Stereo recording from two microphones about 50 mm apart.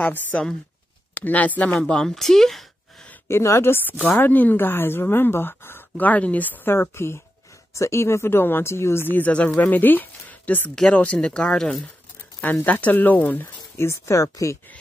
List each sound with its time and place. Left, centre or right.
0.0 s speech: left
1.8 s speech: centre
3.3 s speech: left
4.3 s a woman's voice: left
5.9 s speech: left
6.7 s speech: left
7.7 s speech: left
9.3 s speech: left; by 11.8 s centre
12.6 s speech: left
13.7 s speech: left